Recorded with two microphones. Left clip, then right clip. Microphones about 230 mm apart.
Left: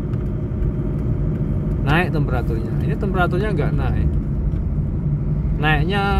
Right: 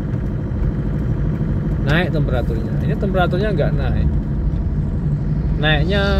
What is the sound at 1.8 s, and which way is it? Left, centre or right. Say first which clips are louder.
Vehicle: even; centre.